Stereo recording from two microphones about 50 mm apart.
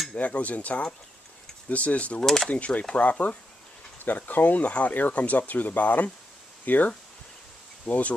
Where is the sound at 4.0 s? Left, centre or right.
Left.